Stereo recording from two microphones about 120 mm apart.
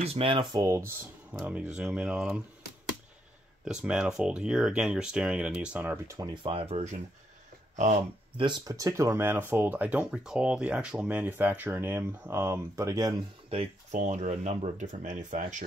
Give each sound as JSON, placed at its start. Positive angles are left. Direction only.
{"t": 0.0, "sound": "speech", "side_deg": -55}
{"t": 0.4, "sound": "speech", "side_deg": -35}
{"t": 1.3, "sound": "speech", "side_deg": -10}
{"t": 3.6, "sound": "speech", "side_deg": -10}
{"t": 6.0, "sound": "speech", "side_deg": -30}
{"t": 6.4, "sound": "speech", "side_deg": -50}
{"t": 7.7, "sound": "speech", "side_deg": -90}
{"t": 8.4, "sound": "speech", "side_deg": -35}
{"t": 13.9, "sound": "speech", "side_deg": -75}